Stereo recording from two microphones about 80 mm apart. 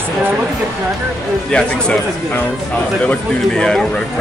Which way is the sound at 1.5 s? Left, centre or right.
Centre.